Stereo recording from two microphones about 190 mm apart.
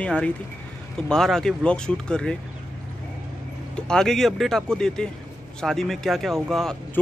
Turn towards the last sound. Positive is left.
turn(degrees=0)  # may be behind; listen again after turning